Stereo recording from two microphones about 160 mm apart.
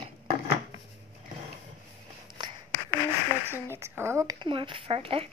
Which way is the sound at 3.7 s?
15° right (ahead or behind).